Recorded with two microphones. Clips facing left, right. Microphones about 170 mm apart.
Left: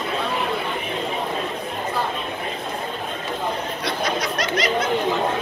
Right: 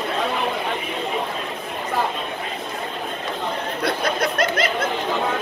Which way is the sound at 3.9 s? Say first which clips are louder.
Right 2 dB; 55° right (ahead or behind).